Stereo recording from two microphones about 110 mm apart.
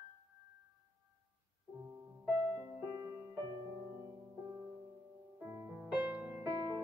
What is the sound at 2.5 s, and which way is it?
Music, 25° right (ahead or behind).